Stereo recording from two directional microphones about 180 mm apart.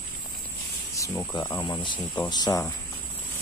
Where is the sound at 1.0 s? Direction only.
15° left (ahead or behind).